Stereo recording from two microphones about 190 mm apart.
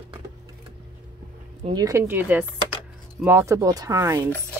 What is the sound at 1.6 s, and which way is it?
Speech, 20° right (ahead or behind).